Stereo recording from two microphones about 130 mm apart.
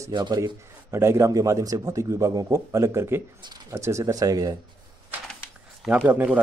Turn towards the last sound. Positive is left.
turn(degrees=-10)  # may be behind; listen again after turning